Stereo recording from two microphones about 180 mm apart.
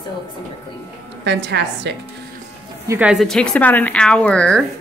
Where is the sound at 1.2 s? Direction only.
75° right (ahead or behind).